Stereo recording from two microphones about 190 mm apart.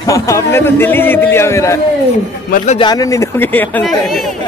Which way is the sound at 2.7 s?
20° left (ahead or behind).